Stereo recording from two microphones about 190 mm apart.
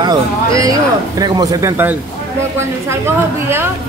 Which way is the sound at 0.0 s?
20° right (ahead or behind).